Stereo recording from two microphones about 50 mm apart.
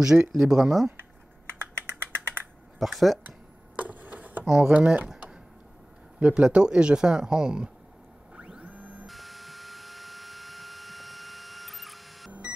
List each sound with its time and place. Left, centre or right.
0.0 s speech: centre
1.6 s a sound: right
2.8 s speech: centre
3.3 s a sound: right
4.5 s speech: centre
4.7 s speech: right
6.1 s speech: centre
8.4 s printer: right
9.0 s a sound: centre